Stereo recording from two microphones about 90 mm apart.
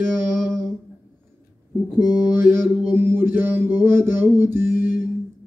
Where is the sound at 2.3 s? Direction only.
25° right (ahead or behind).